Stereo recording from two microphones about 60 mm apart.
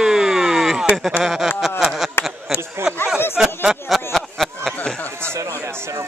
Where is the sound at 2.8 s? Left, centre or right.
Right.